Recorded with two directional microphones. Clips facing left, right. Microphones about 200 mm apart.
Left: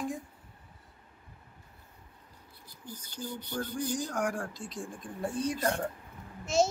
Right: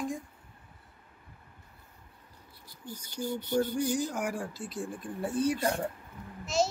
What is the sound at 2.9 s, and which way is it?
Speech, 15° right (ahead or behind).